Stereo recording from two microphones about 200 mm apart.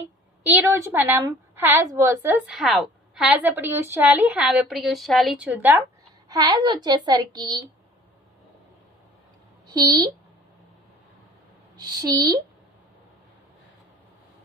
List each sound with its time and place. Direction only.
0.4 s a woman's voice: 10° right (ahead or behind)
9.7 s a woman's voice: 20° right (ahead or behind)
11.8 s a woman's voice: 20° right (ahead or behind)